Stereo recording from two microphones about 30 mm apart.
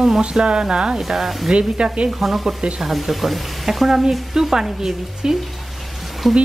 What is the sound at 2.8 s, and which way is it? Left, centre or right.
Frying, centre.